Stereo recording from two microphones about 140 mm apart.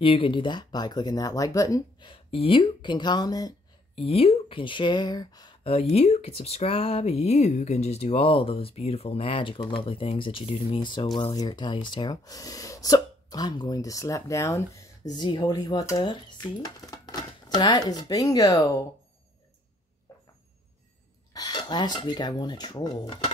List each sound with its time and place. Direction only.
0.0 s speech: 40° left (ahead or behind)
3.9 s speech: 45° left (ahead or behind); by 18.9 s 25° left (ahead or behind)
20.1 s a sound: 20° left (ahead or behind)
21.3 s speech: 30° left (ahead or behind)